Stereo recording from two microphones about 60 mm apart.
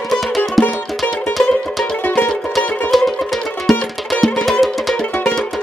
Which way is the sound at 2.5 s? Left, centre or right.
Centre.